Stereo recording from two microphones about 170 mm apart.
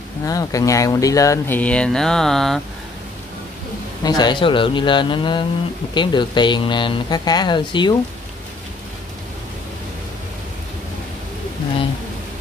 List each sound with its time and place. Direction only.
0.2 s speech: 20° left (ahead or behind)
1.6 s mantra: 5° left (ahead or behind)
4.0 s speech: 25° left (ahead or behind)